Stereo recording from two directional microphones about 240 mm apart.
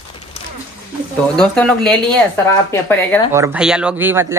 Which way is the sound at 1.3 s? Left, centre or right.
Centre.